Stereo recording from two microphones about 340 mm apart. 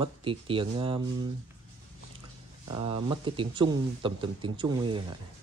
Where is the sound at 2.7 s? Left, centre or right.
Centre.